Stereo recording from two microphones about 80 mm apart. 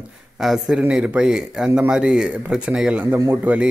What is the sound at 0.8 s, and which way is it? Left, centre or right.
Speech, centre.